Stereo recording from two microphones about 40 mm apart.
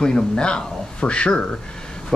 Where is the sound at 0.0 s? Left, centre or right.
Centre.